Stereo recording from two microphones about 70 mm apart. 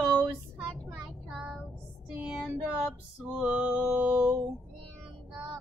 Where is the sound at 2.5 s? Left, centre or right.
Right.